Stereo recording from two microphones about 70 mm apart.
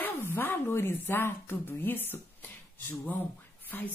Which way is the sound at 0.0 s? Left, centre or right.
Left.